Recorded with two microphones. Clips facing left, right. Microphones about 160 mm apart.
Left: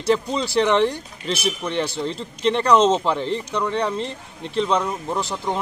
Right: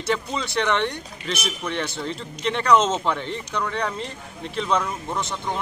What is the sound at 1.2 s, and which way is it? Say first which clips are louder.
Speech: left 5 dB; 30° left (ahead or behind).